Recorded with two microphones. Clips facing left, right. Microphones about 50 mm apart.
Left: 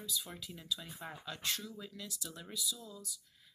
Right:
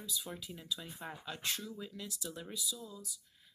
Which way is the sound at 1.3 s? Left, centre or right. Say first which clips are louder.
Even; right.